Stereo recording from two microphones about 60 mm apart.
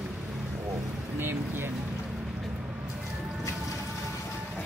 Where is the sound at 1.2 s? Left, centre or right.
Right.